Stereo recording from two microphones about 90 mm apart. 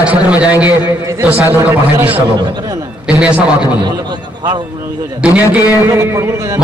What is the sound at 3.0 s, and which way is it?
Speech, 10° right (ahead or behind).